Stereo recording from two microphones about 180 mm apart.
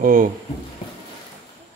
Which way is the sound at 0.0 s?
50° right (ahead or behind).